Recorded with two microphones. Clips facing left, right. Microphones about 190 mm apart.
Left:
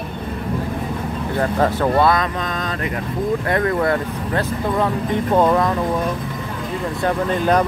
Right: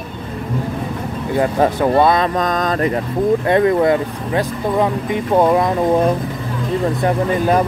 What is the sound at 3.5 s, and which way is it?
Speech, 20° right (ahead or behind).